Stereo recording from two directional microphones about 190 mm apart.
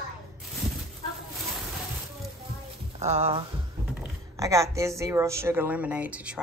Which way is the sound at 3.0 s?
35° right (ahead or behind).